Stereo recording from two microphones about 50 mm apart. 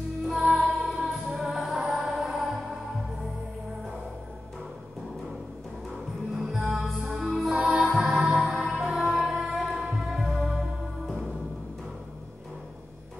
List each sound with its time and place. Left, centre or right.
0.6 s music: centre
5.9 s music: centre
8.7 s music: centre